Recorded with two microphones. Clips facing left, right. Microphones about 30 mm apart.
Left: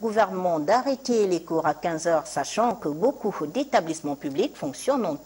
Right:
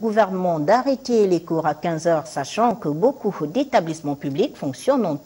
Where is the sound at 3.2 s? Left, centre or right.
Centre.